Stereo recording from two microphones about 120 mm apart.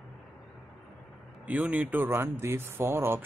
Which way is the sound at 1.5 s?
10° right (ahead or behind).